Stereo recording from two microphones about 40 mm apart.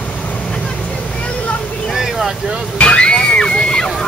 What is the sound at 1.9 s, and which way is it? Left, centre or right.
Boat, centre.